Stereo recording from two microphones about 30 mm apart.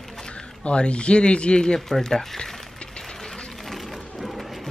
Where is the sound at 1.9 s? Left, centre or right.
Centre.